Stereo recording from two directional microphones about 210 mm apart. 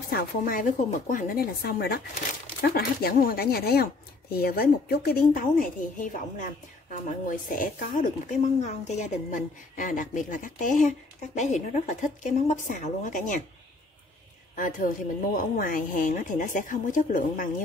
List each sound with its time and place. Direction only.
0.1 s speech: 40° left (ahead or behind)
14.5 s a woman's voice: 40° left (ahead or behind)